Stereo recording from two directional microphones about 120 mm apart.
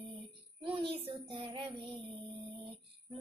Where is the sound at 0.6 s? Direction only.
45° right (ahead or behind).